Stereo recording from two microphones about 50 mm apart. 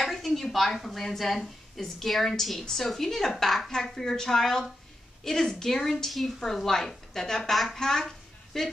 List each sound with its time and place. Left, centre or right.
0.0 s a woman's voice: centre